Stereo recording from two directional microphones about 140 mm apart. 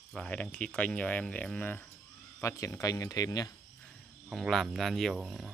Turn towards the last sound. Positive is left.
turn(degrees=0)  # may be behind; listen again after turning